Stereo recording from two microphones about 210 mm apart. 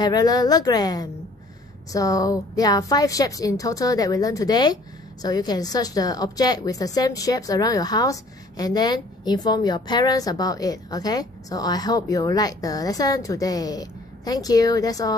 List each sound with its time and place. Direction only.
0.0 s a woman's voice: 20° left (ahead or behind)